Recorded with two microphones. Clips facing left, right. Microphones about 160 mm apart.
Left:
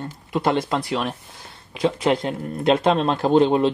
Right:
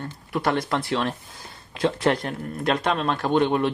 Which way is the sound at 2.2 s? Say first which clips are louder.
Left 4 dB; 20° left (ahead or behind).